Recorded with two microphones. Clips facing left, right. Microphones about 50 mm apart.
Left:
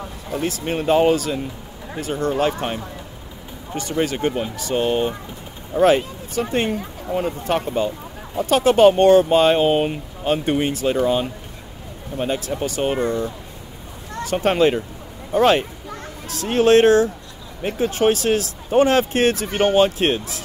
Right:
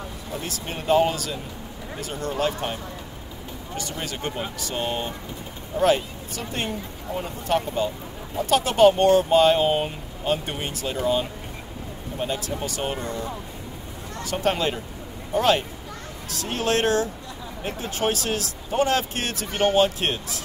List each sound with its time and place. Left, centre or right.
0.7 s speech: left
12.3 s speech: left
14.2 s speech: left